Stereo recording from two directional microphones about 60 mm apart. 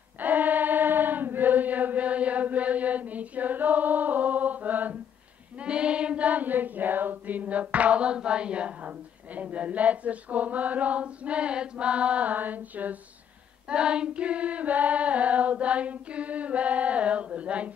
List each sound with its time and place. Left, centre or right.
0.2 s chant: right
5.6 s child singing: centre
13.7 s singing: centre